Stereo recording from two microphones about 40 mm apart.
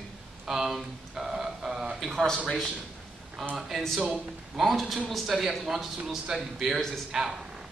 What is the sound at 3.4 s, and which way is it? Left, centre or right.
A man's voice, centre.